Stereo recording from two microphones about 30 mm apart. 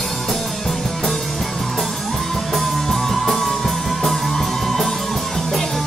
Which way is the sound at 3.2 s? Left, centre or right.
Centre.